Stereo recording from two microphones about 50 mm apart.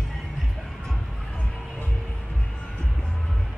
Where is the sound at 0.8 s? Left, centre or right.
Centre.